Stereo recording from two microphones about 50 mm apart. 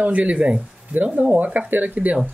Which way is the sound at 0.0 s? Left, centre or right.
Right.